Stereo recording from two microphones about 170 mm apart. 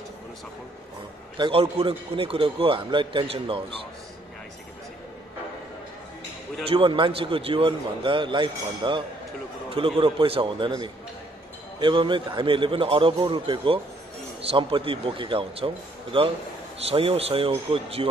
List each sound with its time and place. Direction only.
1.4 s a man's voice: 35° right (ahead or behind)
6.7 s a man's voice: 30° right (ahead or behind)